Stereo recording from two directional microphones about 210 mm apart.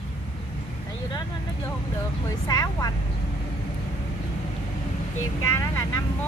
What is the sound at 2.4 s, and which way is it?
Speech, 15° left (ahead or behind).